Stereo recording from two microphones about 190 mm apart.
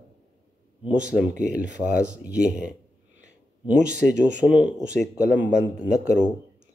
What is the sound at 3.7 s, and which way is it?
Speech, 40° right (ahead or behind).